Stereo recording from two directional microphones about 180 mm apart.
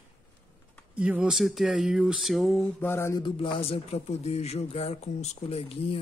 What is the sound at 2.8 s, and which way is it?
Mantra, 15° left (ahead or behind).